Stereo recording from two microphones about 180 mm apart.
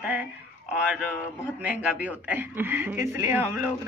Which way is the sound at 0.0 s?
5° right (ahead or behind).